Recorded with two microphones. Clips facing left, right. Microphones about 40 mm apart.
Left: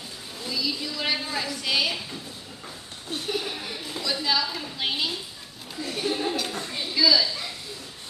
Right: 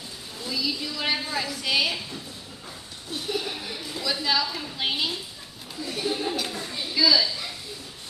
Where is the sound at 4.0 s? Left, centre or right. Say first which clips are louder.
Even; centre.